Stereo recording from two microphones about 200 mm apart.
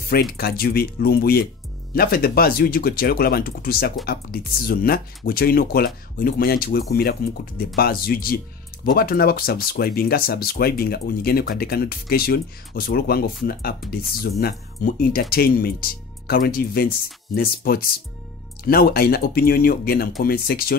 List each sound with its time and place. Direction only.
0.1 s speech: 50° left (ahead or behind)